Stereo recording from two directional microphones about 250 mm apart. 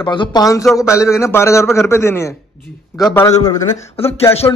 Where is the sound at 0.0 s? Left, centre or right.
Centre.